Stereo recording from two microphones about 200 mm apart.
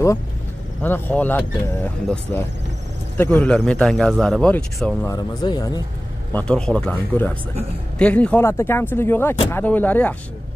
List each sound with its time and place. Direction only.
0.8 s a man's voice: 10° left (ahead or behind)
5.1 s speech: 20° left (ahead or behind)
6.3 s speech: 5° left (ahead or behind)